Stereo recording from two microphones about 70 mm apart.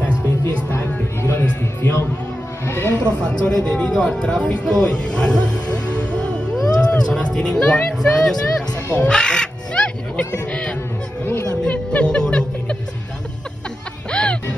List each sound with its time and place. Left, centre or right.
0.5 s music: left
0.7 s a sound: left
2.6 s snake: left
3.0 s speech: centre
5.7 s music: centre
6.5 s speech: centre
8.9 s crow: centre
11.6 s music: centre
14.1 s music: centre